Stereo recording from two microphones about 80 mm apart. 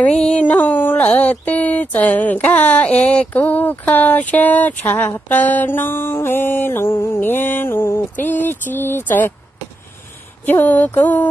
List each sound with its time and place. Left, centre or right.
0.0 s speech: centre
10.4 s speech: left